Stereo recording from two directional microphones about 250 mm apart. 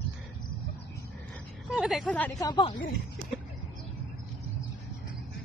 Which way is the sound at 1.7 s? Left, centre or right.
Centre.